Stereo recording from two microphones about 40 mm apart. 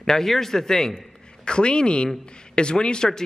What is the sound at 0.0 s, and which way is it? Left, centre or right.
A man's voice, centre.